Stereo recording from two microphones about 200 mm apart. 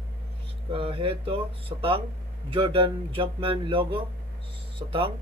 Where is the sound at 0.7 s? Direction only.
25° right (ahead or behind).